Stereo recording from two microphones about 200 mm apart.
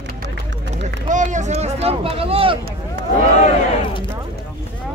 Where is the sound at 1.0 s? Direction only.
40° right (ahead or behind).